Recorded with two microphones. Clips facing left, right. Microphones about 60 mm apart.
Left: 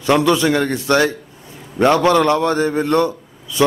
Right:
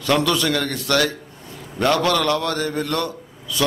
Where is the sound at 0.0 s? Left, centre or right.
Left.